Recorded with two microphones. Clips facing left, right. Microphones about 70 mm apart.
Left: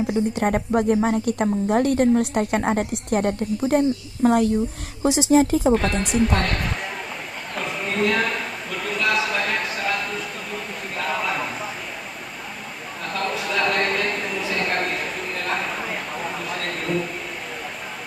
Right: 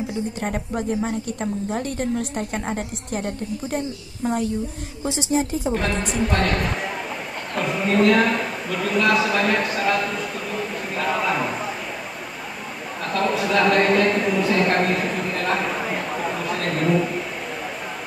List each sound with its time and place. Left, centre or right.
0.4 s a woman's voice: left
5.8 s a woman's voice: centre
13.0 s a sound: centre